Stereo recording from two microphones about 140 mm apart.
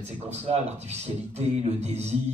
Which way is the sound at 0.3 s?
50° right (ahead or behind).